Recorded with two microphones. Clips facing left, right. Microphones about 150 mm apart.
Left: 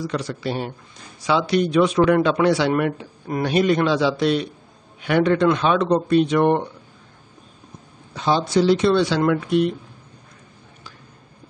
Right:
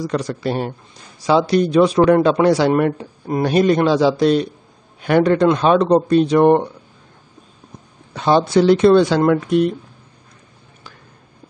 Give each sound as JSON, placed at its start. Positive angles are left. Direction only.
{"t": 0.0, "sound": "a man's voice", "side_deg": -45}
{"t": 8.1, "sound": "speech", "side_deg": -60}